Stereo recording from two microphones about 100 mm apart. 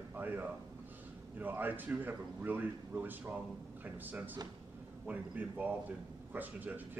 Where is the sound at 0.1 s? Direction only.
20° right (ahead or behind).